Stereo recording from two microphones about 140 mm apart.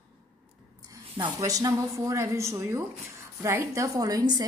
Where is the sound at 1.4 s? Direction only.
25° right (ahead or behind).